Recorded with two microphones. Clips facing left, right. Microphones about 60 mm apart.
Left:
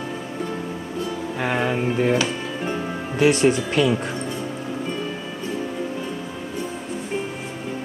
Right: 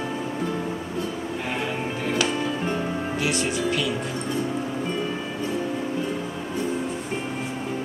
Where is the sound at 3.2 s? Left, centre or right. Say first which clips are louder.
Left 10 dB; left.